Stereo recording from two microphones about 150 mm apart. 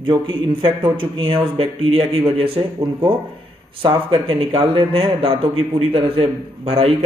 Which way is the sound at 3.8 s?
35° right (ahead or behind).